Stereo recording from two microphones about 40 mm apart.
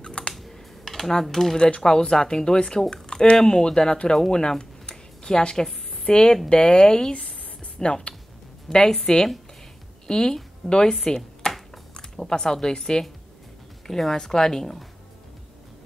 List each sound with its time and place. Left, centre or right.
0.0 s computer keyboard: left
0.3 s computer keyboard: centre
1.2 s speech: centre
4.3 s a sound: centre
6.0 s speech: left
6.5 s a sound: left
8.6 s a woman's voice: centre